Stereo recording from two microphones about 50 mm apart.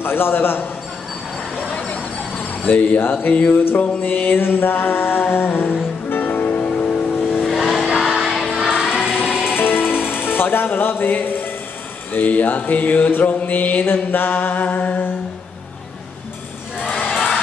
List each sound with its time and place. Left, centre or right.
0.0 s music: left
1.7 s vehicle: left
2.6 s mantra: left
3.0 s music: left
7.4 s vehicle: centre
7.8 s music: centre
9.6 s music: left
12.1 s mantra: left
17.1 s crowd: centre